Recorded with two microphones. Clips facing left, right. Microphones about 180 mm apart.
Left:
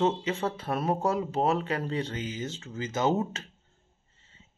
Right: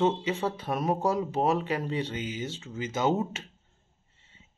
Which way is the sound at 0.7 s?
15° right (ahead or behind).